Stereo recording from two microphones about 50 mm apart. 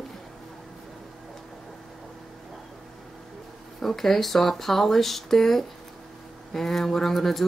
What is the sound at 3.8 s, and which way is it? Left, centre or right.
Speech, centre.